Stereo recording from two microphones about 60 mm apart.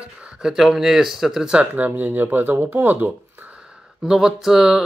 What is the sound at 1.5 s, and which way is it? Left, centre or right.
Speech, right.